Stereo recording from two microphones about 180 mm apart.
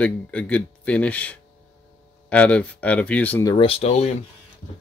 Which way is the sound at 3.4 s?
20° left (ahead or behind).